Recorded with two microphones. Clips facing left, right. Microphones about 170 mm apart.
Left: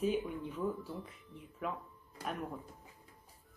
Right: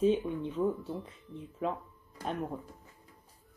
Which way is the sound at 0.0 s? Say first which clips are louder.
Right 6 dB; 25° right (ahead or behind).